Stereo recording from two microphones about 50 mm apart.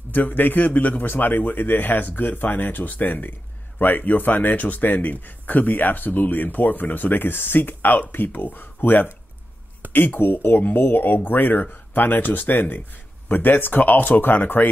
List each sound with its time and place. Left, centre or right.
0.1 s a man's voice: left